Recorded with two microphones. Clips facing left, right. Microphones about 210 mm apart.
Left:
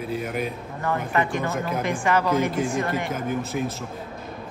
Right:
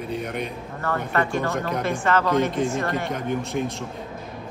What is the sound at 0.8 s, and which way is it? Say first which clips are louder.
A man's voice: even; 15° left (ahead or behind).